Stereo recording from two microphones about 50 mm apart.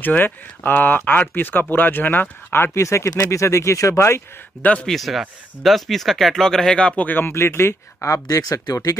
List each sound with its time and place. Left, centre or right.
0.0 s speech: left
2.8 s speech: left
4.6 s speech: left
4.8 s speech: centre; by 7.1 s left
7.1 s speech: left
7.3 s speech: left